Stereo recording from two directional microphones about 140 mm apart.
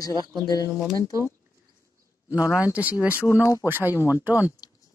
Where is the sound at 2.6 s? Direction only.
10° right (ahead or behind).